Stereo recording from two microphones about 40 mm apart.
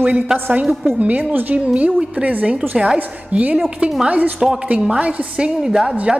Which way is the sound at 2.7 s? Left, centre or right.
Centre.